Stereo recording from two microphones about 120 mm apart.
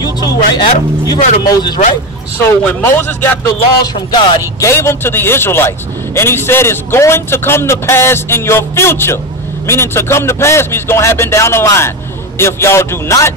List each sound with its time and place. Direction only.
0.0 s speech: 35° left (ahead or behind)
2.3 s a man's voice: 20° left (ahead or behind)
3.8 s music: 35° left (ahead or behind)
4.6 s speech: 20° left (ahead or behind)